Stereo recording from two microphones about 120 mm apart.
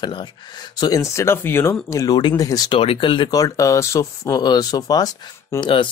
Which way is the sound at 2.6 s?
50° left (ahead or behind).